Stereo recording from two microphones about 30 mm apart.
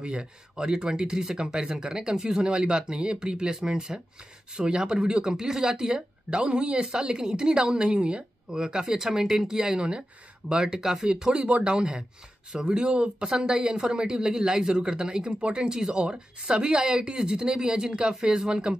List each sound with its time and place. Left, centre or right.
0.0 s speech: right
10.5 s speech: right